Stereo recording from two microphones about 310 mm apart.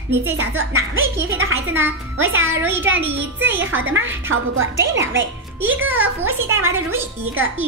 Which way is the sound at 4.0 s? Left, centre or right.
Right.